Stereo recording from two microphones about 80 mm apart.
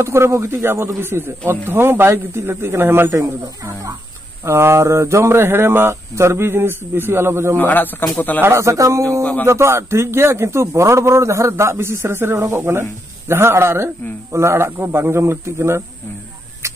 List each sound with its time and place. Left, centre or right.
0.0 s speech: right
3.2 s speech: right
7.5 s a man's voice: left
8.4 s speech: right
9.2 s a man's voice: centre
9.5 s speech: right